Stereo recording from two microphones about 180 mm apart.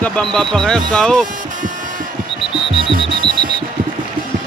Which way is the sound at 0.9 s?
5° left (ahead or behind).